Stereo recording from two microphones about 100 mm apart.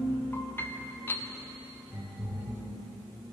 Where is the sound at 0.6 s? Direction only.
20° left (ahead or behind).